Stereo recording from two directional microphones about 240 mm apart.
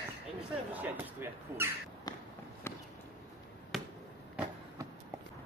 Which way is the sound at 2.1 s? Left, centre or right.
Centre.